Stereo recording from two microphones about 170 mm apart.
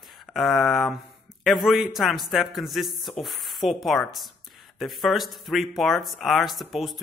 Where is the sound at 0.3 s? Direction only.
Centre (ahead or behind).